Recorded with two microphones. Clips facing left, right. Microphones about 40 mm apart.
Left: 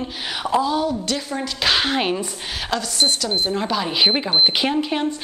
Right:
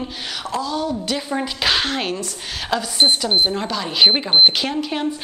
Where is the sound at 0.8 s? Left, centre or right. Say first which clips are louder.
Even; centre.